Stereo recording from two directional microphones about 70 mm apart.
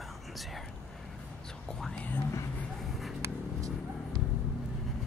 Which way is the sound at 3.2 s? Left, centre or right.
Right.